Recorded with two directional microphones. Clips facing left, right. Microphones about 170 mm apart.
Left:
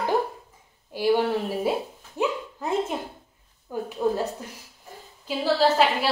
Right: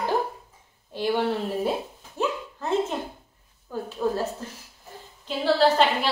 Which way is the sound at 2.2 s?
10° left (ahead or behind).